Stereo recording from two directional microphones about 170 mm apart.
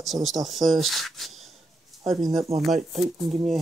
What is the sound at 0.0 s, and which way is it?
Speech, centre (ahead or behind).